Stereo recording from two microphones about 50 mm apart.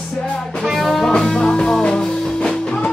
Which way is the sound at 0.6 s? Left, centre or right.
Centre.